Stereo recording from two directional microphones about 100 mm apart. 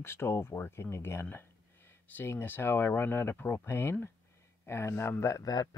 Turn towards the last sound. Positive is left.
turn(degrees=35)  # may be behind; listen again after turning